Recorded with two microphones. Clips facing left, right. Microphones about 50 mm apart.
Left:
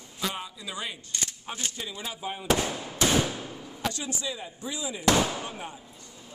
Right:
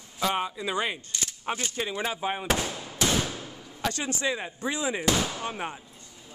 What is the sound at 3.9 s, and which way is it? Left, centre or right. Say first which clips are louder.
Speech: right 6 dB; right.